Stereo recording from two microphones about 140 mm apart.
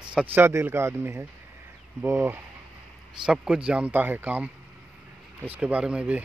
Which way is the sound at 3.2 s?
5° right (ahead or behind).